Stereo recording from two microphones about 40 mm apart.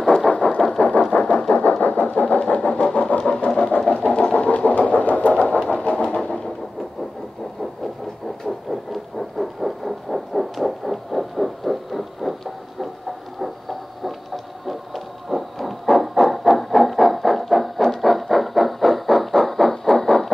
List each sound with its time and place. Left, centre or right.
0.4 s a sound: left
1.1 s vehicle: left
1.5 s vehicle: left
2.4 s vehicle: left
3.2 s music: left
4.0 s vehicle: left
4.3 s vehicle: left
5.7 s a sound: left
5.9 s a sound: centre
8.5 s heart murmur: centre
13.4 s heart murmur: centre
15.2 s a sound: centre